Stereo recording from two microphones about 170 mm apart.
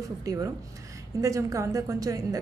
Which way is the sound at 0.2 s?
20° right (ahead or behind).